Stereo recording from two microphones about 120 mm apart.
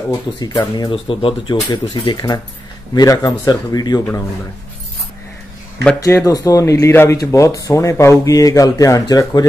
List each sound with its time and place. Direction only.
0.1 s speech: 35° left (ahead or behind)
5.9 s speech: 25° left (ahead or behind)